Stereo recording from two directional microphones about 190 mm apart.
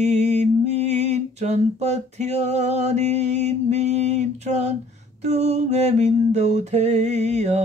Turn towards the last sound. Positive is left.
turn(degrees=-35)  # may be behind; listen again after turning